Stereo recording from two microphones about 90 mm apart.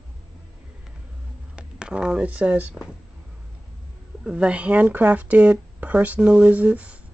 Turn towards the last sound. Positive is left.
turn(degrees=-15)  # may be behind; listen again after turning